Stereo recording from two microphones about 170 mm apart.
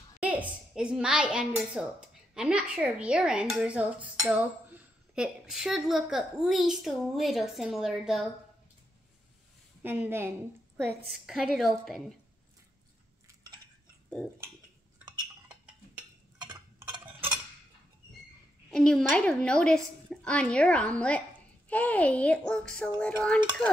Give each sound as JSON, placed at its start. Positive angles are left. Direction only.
{"t": 0.2, "sound": "speech", "side_deg": -10}
{"t": 9.8, "sound": "a woman's voice", "side_deg": -10}
{"t": 11.1, "sound": "speech", "side_deg": 0}
{"t": 16.3, "sound": "a sound", "side_deg": -25}
{"t": 18.7, "sound": "a child's voice", "side_deg": 5}